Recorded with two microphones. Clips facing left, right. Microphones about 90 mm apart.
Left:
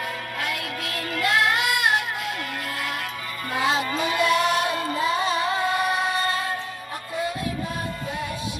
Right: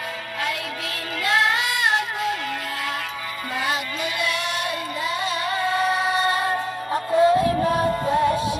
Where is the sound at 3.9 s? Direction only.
35° left (ahead or behind).